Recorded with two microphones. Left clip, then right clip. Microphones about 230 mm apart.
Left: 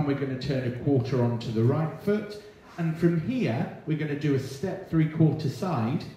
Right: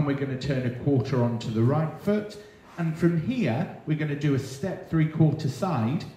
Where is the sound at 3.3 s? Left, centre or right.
Right.